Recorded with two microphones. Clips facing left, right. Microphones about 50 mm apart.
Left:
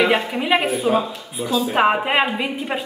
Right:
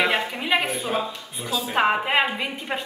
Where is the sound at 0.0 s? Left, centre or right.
Centre.